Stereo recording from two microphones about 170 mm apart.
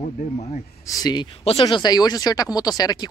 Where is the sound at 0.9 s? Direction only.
20° left (ahead or behind).